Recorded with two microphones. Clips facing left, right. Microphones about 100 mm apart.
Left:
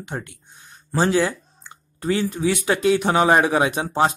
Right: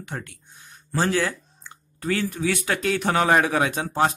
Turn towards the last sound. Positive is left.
turn(degrees=15)  # may be behind; listen again after turning